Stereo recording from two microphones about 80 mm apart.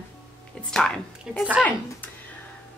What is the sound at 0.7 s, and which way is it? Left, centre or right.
Speech, centre.